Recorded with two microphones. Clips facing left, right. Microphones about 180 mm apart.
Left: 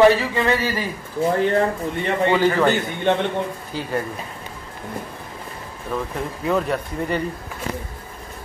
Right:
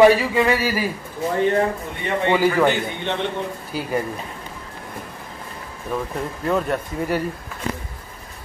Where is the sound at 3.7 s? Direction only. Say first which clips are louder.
Right 2 dB; 10° right (ahead or behind).